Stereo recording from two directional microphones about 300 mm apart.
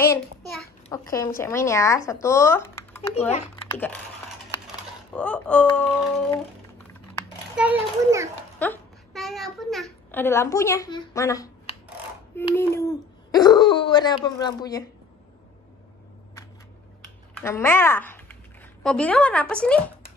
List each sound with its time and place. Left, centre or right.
0.8 s speech: centre
3.2 s speech: left
3.7 s speech: centre
5.1 s speech: centre
7.5 s a child's voice: centre
8.5 s a child's voice: centre
17.4 s speech: centre